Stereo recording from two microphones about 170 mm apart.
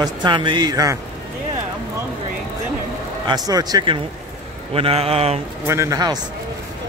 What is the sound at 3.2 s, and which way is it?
A man's voice, 25° right (ahead or behind).